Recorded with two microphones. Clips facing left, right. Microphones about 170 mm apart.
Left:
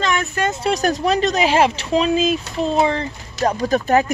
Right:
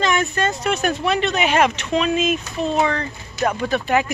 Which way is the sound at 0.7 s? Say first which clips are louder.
Left 4 dB; 35° left (ahead or behind).